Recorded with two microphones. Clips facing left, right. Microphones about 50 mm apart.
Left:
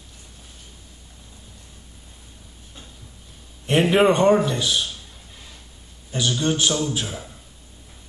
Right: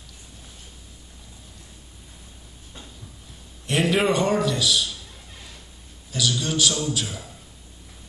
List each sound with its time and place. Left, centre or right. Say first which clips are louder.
3.6 s a man's voice: left 4 dB; left
6.1 s a man's voice: left 2 dB; left